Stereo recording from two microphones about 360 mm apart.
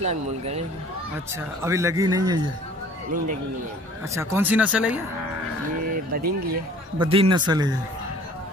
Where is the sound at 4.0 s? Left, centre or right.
Centre.